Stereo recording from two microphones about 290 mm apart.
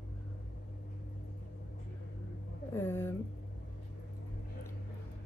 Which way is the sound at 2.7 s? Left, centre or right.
Centre.